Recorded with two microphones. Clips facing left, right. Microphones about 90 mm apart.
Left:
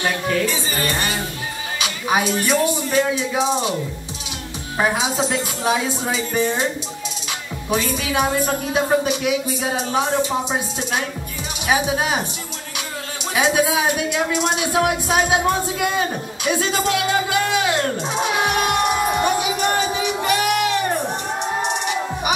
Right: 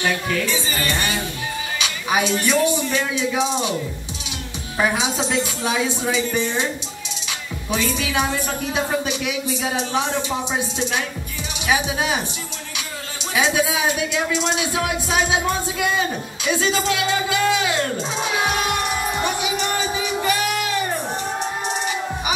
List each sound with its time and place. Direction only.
0.0 s a woman's voice: 35° left (ahead or behind)
4.7 s a woman's voice: 40° left (ahead or behind)
7.7 s a woman's voice: 40° left (ahead or behind)
13.3 s a sound: 50° left (ahead or behind); by 22.3 s 65° left (ahead or behind)